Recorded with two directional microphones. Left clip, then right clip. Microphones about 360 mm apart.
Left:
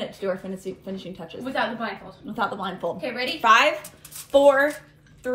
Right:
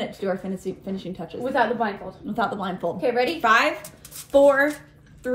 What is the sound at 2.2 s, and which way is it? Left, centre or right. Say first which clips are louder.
A woman's voice: right 1 dB; centre.